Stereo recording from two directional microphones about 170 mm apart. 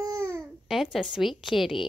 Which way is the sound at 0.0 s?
15° right (ahead or behind).